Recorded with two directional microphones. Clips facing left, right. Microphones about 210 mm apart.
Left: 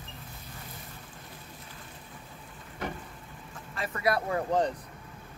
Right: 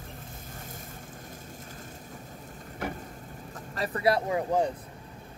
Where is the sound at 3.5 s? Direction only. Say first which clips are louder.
Right 4 dB; 35° right (ahead or behind).